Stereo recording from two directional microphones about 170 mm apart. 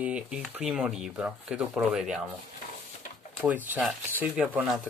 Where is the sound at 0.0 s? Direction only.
5° right (ahead or behind).